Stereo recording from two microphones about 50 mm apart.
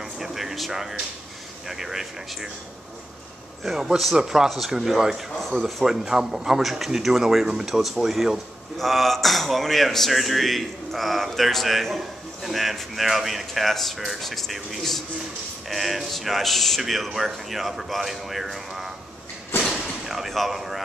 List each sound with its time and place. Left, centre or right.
0.2 s air conditioning: centre
1.7 s speech: centre
3.6 s speech: centre
5.5 s speech: centre
5.9 s speech: centre